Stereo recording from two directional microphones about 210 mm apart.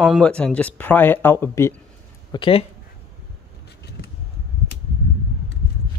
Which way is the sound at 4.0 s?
50° left (ahead or behind).